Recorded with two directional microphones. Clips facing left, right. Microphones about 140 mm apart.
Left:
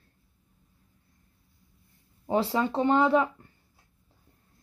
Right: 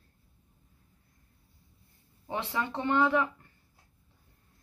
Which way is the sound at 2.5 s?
30° left (ahead or behind).